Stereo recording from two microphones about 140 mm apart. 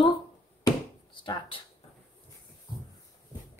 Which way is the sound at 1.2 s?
35° left (ahead or behind).